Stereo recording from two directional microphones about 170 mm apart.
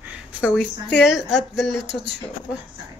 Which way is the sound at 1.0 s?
Centre (ahead or behind).